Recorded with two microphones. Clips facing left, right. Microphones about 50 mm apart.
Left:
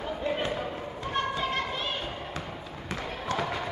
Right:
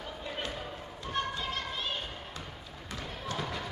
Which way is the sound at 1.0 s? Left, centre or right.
Left.